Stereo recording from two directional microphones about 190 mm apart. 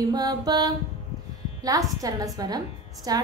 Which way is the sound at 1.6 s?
15° right (ahead or behind).